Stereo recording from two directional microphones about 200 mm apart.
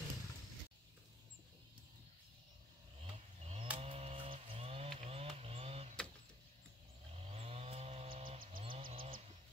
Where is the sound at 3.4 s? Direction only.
30° right (ahead or behind).